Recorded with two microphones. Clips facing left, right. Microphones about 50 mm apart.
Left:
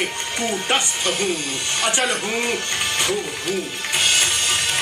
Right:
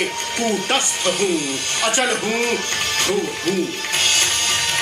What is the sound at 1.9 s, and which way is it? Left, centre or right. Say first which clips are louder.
Speech: right 2 dB; centre.